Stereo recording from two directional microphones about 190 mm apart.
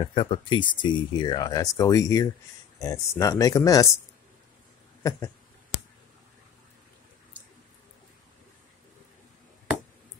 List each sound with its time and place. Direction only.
0.0 s speech: 25° left (ahead or behind)